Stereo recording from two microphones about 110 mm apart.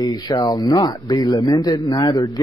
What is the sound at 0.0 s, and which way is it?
A man's voice, 40° left (ahead or behind).